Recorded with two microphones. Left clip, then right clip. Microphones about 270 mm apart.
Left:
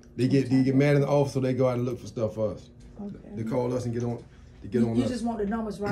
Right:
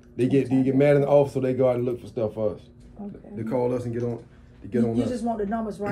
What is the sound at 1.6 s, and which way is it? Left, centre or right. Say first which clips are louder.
Speech: right 5 dB; left.